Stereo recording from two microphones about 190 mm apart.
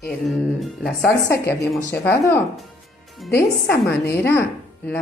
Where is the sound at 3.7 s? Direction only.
55° left (ahead or behind).